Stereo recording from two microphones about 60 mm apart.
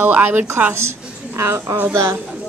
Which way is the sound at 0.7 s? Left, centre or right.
Right.